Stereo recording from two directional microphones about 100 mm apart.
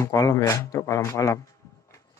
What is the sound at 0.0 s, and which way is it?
Speech, 35° left (ahead or behind).